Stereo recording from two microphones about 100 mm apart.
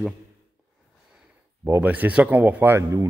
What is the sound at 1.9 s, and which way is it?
Speech, 15° right (ahead or behind).